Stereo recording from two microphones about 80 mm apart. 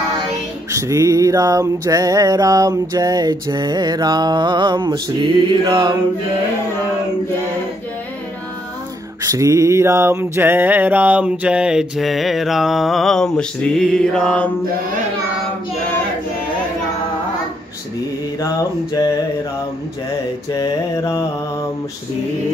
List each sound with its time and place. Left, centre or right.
0.7 s music: right
9.2 s mantra: right; by 11.8 s centre
12.0 s mantra: centre
20.5 s mantra: left
20.9 s mantra: left